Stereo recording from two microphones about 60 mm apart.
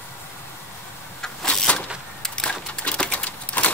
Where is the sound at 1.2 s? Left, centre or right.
Centre.